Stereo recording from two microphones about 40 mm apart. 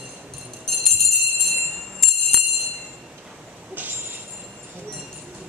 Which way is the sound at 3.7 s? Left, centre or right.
Right.